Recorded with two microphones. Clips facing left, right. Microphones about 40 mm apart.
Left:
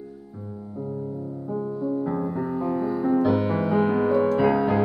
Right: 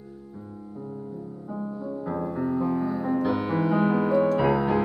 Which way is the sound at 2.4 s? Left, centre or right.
Centre.